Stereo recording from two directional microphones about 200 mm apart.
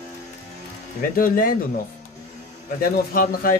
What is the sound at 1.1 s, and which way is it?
Speech, 45° left (ahead or behind).